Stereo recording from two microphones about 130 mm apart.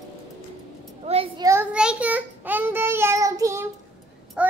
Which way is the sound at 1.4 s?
20° right (ahead or behind).